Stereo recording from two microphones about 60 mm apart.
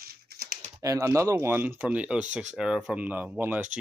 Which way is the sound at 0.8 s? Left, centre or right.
Right.